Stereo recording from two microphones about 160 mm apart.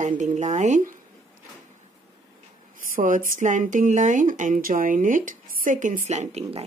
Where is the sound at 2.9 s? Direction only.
55° right (ahead or behind).